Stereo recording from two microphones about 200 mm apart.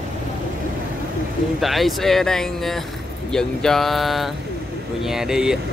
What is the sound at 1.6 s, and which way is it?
Speech, centre (ahead or behind).